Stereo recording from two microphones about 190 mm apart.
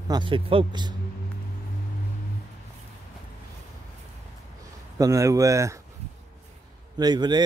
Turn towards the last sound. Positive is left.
turn(degrees=-20)  # may be behind; listen again after turning